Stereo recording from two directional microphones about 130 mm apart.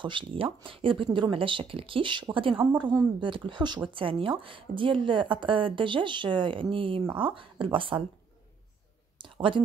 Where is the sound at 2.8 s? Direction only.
30° right (ahead or behind).